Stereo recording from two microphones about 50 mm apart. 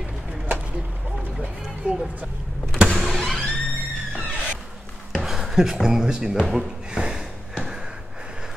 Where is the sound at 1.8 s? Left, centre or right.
Right.